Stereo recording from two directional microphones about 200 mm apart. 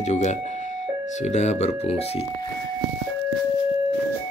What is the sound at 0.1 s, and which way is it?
Speech, 35° left (ahead or behind).